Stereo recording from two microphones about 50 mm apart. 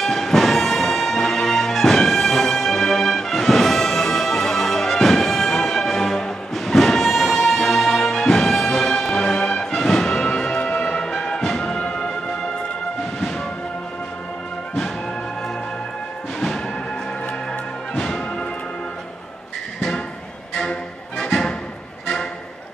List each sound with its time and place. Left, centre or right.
0.0 s music: centre